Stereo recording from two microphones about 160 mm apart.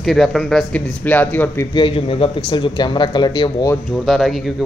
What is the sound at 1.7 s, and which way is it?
Speech, 30° left (ahead or behind).